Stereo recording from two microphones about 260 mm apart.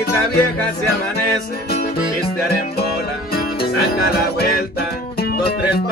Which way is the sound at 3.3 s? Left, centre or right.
Left.